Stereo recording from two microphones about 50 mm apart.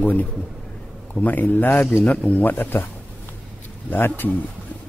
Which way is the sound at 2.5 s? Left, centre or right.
Left.